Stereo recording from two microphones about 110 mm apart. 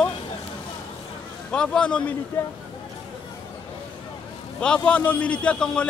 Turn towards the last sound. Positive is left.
turn(degrees=10)  # may be behind; listen again after turning